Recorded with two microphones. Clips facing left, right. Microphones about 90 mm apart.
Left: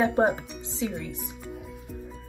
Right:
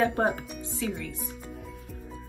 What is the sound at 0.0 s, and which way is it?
Speech, 15° left (ahead or behind).